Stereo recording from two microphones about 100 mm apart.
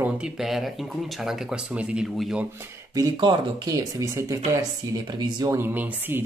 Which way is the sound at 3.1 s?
50° right (ahead or behind).